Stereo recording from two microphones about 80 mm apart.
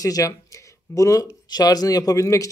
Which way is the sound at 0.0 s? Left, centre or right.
Left.